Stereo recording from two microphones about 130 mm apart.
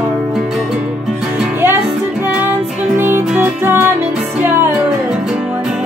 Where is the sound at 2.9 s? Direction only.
15° right (ahead or behind).